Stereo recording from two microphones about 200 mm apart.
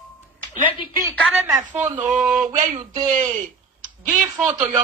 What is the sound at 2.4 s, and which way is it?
Speech, 35° right (ahead or behind).